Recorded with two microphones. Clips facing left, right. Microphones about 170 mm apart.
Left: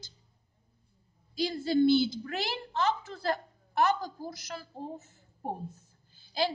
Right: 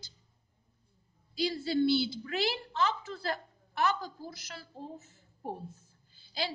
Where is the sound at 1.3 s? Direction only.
50° left (ahead or behind).